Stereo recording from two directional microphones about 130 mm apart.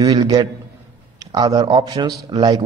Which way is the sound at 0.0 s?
30° right (ahead or behind).